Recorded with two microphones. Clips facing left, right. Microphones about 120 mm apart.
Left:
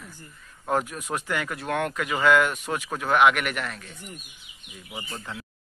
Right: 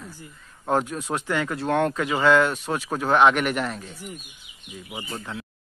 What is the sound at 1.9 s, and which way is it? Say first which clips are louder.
Speech: right 3 dB; 5° right (ahead or behind).